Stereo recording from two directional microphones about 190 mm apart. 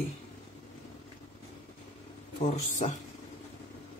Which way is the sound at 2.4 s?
35° left (ahead or behind).